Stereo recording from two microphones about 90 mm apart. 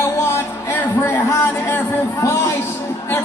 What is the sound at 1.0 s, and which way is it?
A man's voice, 25° left (ahead or behind).